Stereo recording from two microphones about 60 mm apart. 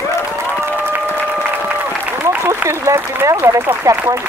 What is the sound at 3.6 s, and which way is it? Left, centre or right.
Speech, right.